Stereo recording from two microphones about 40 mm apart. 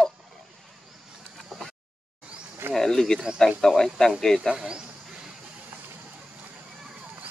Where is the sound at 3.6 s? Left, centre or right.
Centre.